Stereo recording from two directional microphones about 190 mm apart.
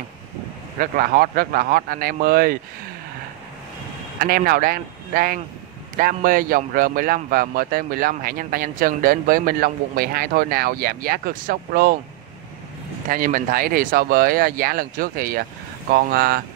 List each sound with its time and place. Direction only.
0.7 s speech: 50° right (ahead or behind)
4.2 s speech: 50° right (ahead or behind)
13.1 s speech: 45° right (ahead or behind)